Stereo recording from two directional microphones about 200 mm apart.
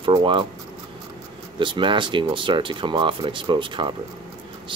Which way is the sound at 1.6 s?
25° right (ahead or behind).